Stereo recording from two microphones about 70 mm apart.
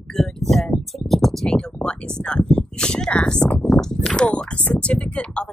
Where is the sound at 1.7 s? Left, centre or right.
Centre.